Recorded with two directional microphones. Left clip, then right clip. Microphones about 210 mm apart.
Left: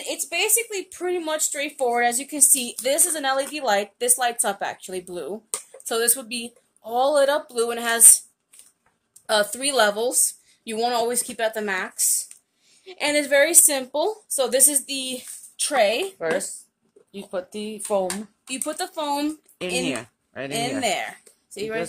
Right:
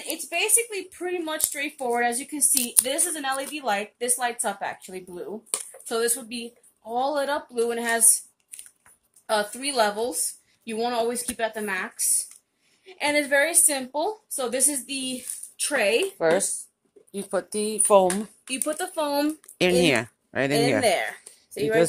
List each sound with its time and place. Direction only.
0.0 s a woman's voice: 50° left (ahead or behind)
9.2 s a woman's voice: 50° left (ahead or behind)
16.2 s speech: 40° right (ahead or behind)
18.5 s speech: 40° left (ahead or behind)
19.6 s speech: 40° right (ahead or behind)